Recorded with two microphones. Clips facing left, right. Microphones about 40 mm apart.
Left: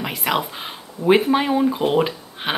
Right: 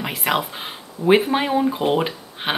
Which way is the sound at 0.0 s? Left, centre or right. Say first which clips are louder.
Even; centre.